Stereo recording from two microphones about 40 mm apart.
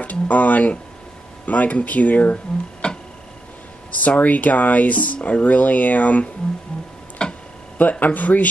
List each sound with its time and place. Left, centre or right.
0.0 s a sound: left
1.4 s speech: left
2.3 s speech: left
4.1 s speech: left
7.2 s tick-tock: left
8.0 s speech: left